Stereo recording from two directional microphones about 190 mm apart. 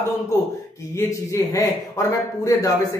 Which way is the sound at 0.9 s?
15° left (ahead or behind).